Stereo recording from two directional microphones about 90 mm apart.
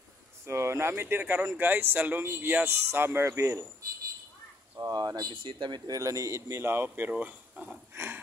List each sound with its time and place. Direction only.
0.5 s speech: 30° right (ahead or behind)
4.7 s speech: 45° right (ahead or behind)
5.3 s speech: 70° right (ahead or behind)
5.9 s a man's voice: 40° right (ahead or behind)
6.6 s speech: 25° right (ahead or behind)
7.9 s a sound: 25° right (ahead or behind)